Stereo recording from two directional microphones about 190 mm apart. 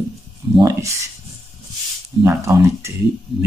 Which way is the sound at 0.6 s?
15° right (ahead or behind).